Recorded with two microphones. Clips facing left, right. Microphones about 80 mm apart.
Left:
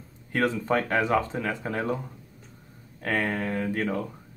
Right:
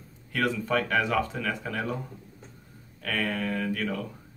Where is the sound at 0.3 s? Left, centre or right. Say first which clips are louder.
Left 2 dB; left.